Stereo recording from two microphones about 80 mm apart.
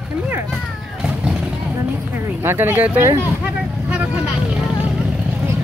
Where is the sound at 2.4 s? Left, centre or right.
Right.